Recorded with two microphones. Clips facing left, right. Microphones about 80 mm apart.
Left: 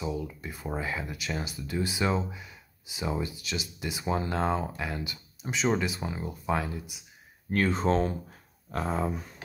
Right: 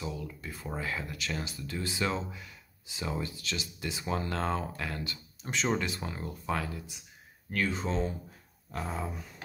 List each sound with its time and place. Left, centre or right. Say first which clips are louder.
0.0 s speech: left 5 dB; centre
7.5 s speech: left 6 dB; left
8.7 s a sound: left 6 dB; left